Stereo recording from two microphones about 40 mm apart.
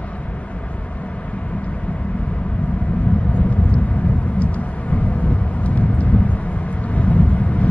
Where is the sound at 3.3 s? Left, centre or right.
Left.